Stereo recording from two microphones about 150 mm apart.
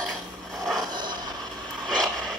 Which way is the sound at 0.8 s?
30° right (ahead or behind).